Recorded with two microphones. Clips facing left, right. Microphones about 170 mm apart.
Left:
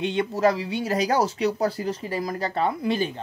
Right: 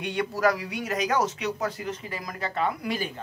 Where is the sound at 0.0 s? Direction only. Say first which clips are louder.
Left 3 dB; 25° left (ahead or behind).